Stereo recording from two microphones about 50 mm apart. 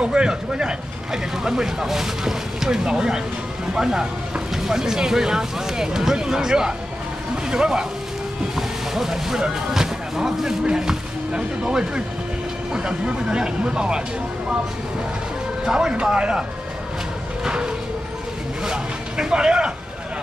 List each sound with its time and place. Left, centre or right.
0.0 s speech: centre
15.6 s speech: centre
17.5 s a sound: centre
18.6 s speech: centre